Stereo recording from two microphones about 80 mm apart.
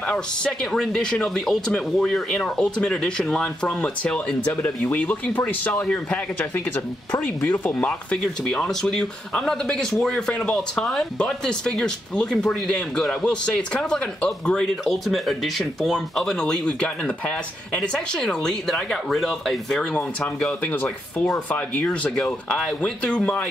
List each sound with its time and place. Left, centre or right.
0.1 s speech: centre; by 7.9 s left
8.1 s speech: centre